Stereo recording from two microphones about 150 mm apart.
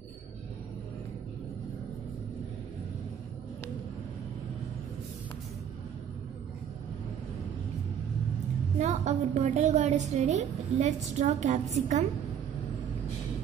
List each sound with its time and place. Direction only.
8.7 s a woman's voice: 50° right (ahead or behind)